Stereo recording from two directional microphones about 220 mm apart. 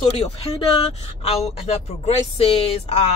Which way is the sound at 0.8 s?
30° left (ahead or behind).